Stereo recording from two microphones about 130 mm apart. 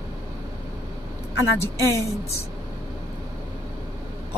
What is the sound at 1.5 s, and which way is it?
Speech, 20° left (ahead or behind).